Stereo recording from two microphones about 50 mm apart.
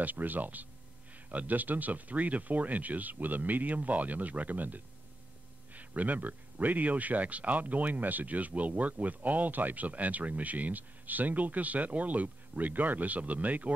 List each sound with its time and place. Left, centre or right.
0.0 s speech: right